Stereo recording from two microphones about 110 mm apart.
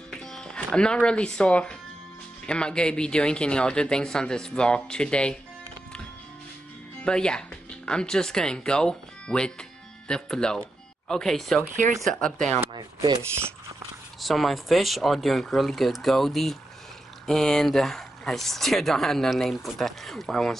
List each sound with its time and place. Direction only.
0.2 s speech: 5° left (ahead or behind)
7.1 s speech: 5° left (ahead or behind)
12.7 s rub: 40° right (ahead or behind)
14.2 s speech: centre (ahead or behind)